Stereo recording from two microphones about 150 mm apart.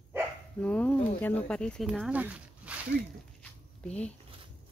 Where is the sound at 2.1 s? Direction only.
10° right (ahead or behind).